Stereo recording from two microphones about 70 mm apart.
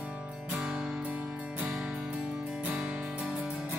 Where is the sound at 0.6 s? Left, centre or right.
Centre.